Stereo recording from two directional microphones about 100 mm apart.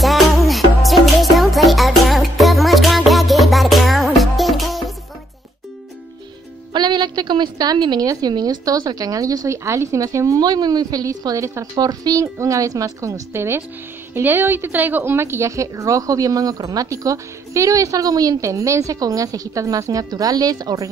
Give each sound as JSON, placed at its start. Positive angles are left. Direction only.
{"t": 0.0, "sound": "music", "side_deg": 0}
{"t": 6.7, "sound": "a woman's voice", "side_deg": -45}
{"t": 11.7, "sound": "a woman's voice", "side_deg": -40}
{"t": 13.3, "sound": "a woman's voice", "side_deg": -25}